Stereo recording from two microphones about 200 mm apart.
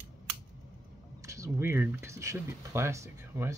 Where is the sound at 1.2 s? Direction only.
15° right (ahead or behind).